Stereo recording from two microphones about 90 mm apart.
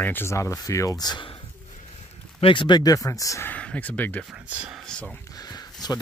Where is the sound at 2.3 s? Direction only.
70° left (ahead or behind); by 3.5 s 35° left (ahead or behind).